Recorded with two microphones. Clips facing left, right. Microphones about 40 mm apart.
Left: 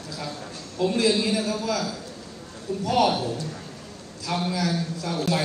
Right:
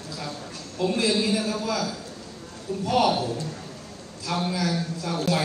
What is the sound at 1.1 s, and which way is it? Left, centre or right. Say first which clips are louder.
Speech: left 1 dB; left.